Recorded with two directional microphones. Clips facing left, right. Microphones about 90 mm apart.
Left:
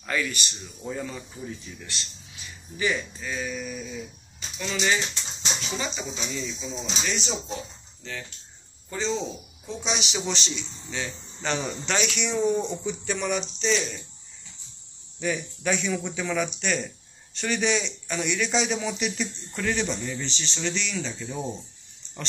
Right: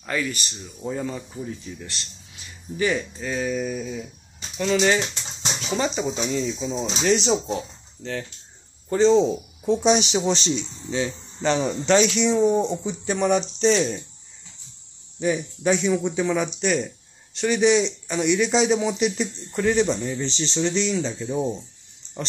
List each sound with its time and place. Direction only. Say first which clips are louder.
0.0 s speech: right 2 dB; 25° right (ahead or behind)
2.8 s speech: right 4 dB; 45° right (ahead or behind)
7.2 s speech: right 9 dB; 75° right (ahead or behind)
8.8 s speech: right 12 dB; 50° right (ahead or behind)
9.8 s speech: right 8 dB; 40° right (ahead or behind)
13.4 s speech: right 7 dB; 50° right (ahead or behind)
15.1 s speech: right 5 dB; 25° right (ahead or behind)